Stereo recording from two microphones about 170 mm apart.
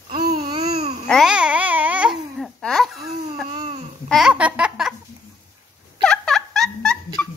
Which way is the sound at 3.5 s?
25° right (ahead or behind).